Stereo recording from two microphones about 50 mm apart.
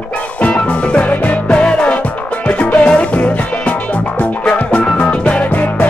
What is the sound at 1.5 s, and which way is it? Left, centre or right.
Music, left.